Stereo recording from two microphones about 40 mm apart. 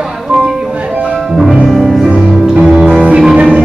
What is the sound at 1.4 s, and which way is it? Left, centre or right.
Music, centre.